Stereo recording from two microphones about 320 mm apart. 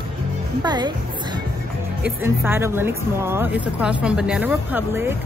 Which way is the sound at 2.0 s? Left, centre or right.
Centre.